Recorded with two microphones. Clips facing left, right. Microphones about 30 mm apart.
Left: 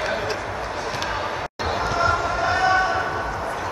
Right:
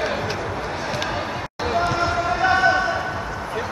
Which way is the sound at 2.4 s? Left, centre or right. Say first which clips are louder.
Right 3 dB; centre.